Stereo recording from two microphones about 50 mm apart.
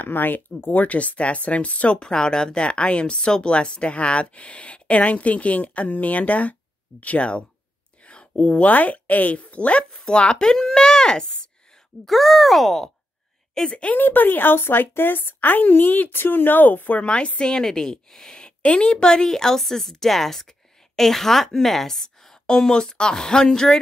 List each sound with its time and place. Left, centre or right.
0.0 s a woman's voice: left
8.0 s a sound: left
8.4 s speech: left
12.1 s speech: centre
13.7 s speech: left
13.9 s a woman's voice: left
17.0 s a woman's voice: left